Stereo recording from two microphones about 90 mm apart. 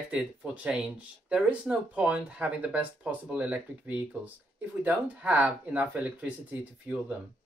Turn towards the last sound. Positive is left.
turn(degrees=-20)  # may be behind; listen again after turning